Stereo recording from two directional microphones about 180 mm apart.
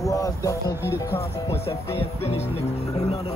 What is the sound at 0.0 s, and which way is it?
Speech, 20° left (ahead or behind).